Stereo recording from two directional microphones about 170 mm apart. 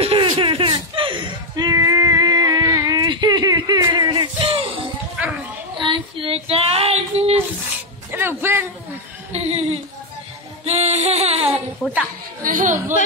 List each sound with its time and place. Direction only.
0.0 s a sound: 30° right (ahead or behind)
5.8 s female singing: 30° right (ahead or behind)
8.1 s music: 15° right (ahead or behind)
9.3 s a sound: 40° right (ahead or behind)
10.6 s music: 40° right (ahead or behind)
12.4 s chatter: 50° right (ahead or behind)